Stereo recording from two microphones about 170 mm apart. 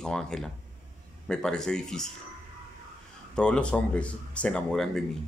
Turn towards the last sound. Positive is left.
turn(degrees=5)  # may be behind; listen again after turning